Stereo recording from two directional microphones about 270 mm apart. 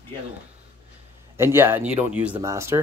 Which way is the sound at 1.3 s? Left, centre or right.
Centre.